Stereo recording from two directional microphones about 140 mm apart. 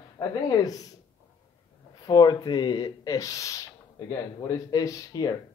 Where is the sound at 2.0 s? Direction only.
30° left (ahead or behind).